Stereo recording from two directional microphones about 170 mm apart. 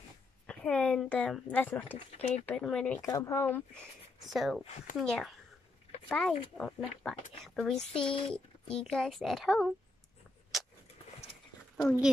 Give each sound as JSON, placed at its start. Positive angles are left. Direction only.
{"t": 0.5, "sound": "speech", "side_deg": 5}
{"t": 2.1, "sound": "speech", "side_deg": 40}
{"t": 2.4, "sound": "speech", "side_deg": 5}
{"t": 3.0, "sound": "speech", "side_deg": 20}
{"t": 4.3, "sound": "speech", "side_deg": 0}
{"t": 7.9, "sound": "speech", "side_deg": 30}
{"t": 8.3, "sound": "speech", "side_deg": 5}